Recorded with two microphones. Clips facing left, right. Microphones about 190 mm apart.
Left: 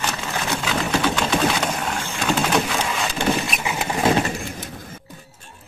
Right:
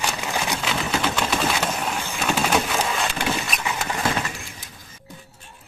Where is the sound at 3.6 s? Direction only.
20° left (ahead or behind).